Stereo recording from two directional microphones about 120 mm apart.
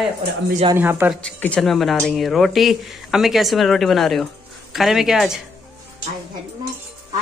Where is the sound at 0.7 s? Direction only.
15° right (ahead or behind).